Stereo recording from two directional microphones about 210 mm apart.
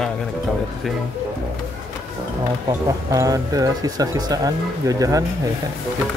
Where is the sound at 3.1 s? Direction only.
15° right (ahead or behind).